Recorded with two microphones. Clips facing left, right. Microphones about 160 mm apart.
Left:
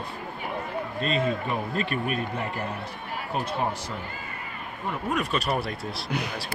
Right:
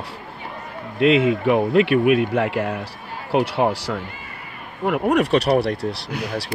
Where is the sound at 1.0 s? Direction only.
85° right.